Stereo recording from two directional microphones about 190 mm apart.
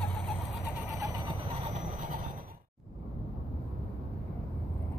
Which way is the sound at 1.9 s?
45° right (ahead or behind).